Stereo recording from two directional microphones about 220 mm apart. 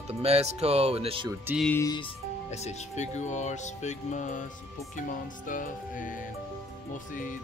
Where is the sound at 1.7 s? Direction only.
15° left (ahead or behind); by 4.4 s 35° left (ahead or behind).